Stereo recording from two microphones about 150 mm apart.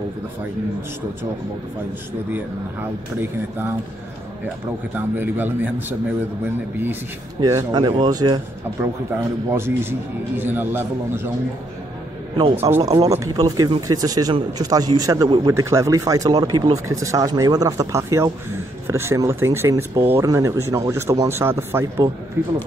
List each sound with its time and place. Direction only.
2.3 s speech: 15° right (ahead or behind)
4.9 s speech: 15° right (ahead or behind)
7.3 s speech: 25° right (ahead or behind)
9.1 s speech: 15° right (ahead or behind)
12.5 s speech: 15° right (ahead or behind)